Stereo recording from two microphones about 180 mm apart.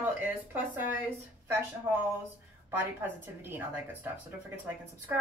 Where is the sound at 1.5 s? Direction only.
10° right (ahead or behind).